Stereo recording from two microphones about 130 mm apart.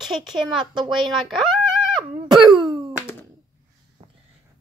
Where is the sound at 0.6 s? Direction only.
35° right (ahead or behind).